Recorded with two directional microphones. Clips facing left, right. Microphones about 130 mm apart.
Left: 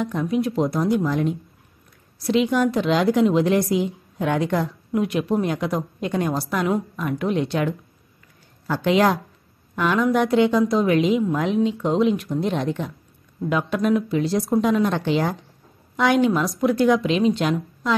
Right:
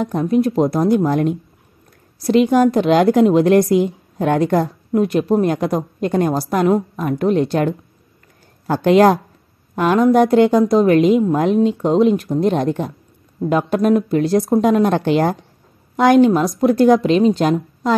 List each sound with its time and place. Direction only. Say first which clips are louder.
0.0 s a woman's voice: right 6 dB; 40° right (ahead or behind)
2.2 s a woman's voice: right 6 dB; 45° right (ahead or behind)
8.7 s a woman's voice: right 7 dB; 45° right (ahead or behind)
16.3 s speech: right 5 dB; 30° right (ahead or behind)
16.5 s a woman's voice: right 6 dB; 40° right (ahead or behind)